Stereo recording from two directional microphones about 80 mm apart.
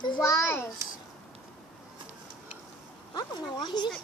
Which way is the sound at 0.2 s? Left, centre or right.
Left.